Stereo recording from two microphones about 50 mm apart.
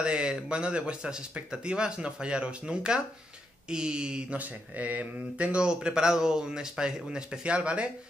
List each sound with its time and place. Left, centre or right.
0.0 s speech: centre
4.4 s speech: right